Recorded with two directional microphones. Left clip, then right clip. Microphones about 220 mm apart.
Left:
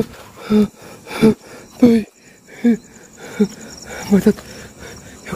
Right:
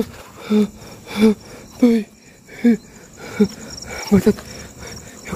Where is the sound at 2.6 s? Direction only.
5° left (ahead or behind).